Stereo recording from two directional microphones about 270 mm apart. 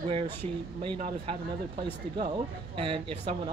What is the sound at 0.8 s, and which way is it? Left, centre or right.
Speech, centre.